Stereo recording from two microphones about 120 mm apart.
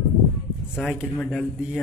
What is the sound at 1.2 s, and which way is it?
Speech, 5° left (ahead or behind).